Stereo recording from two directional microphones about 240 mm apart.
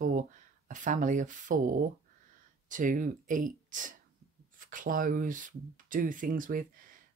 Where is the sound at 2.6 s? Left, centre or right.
Right.